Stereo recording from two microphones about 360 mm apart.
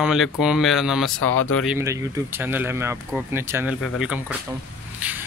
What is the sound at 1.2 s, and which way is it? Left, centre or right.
Speech, left.